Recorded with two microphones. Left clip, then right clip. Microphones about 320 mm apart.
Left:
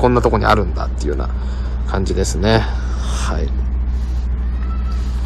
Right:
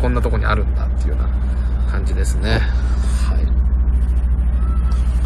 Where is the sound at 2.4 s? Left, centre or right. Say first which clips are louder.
Left 6 dB; left.